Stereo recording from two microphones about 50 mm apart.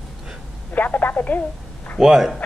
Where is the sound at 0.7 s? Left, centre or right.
Left.